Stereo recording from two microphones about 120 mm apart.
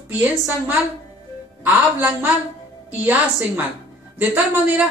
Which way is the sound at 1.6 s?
15° right (ahead or behind).